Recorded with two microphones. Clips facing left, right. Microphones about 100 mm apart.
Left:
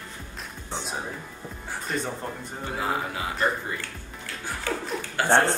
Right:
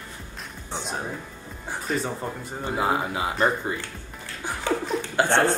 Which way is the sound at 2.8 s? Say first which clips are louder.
Right 4 dB; 20° right (ahead or behind).